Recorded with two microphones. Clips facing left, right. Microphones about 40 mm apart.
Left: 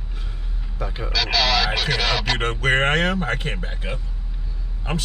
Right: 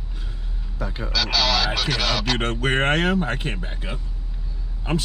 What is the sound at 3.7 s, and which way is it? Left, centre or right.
Speech, centre.